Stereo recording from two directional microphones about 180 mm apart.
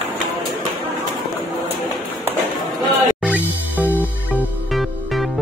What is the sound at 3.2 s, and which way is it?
Music, 10° right (ahead or behind).